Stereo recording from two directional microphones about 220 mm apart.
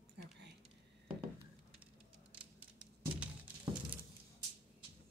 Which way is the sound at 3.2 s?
5° right (ahead or behind).